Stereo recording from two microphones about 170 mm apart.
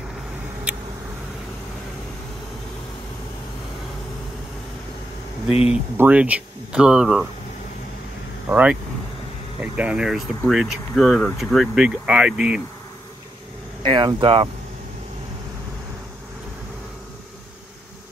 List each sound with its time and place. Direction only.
0.7 s vehicle: 5° right (ahead or behind)
5.7 s speech: 10° right (ahead or behind)
8.5 s speech: 10° right (ahead or behind)
13.8 s speech: 30° right (ahead or behind)